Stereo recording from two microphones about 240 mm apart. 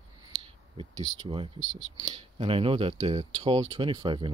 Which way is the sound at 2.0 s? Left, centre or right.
Right.